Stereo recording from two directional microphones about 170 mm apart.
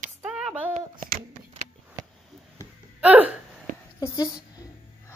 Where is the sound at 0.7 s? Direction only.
45° right (ahead or behind).